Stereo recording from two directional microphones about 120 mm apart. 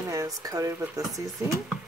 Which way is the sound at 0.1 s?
30° right (ahead or behind).